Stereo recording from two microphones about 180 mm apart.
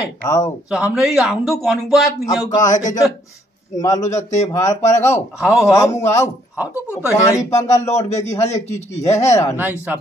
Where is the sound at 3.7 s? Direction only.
20° left (ahead or behind).